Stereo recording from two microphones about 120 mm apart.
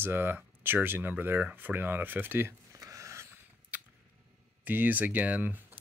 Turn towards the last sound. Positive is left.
turn(degrees=-15)  # may be behind; listen again after turning